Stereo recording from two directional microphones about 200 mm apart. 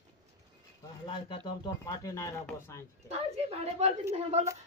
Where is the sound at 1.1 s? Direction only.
25° left (ahead or behind).